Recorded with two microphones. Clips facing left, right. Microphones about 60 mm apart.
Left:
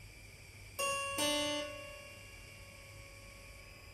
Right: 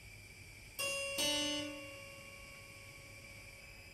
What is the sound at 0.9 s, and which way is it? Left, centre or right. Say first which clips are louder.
Harpsichord: left 3 dB; left.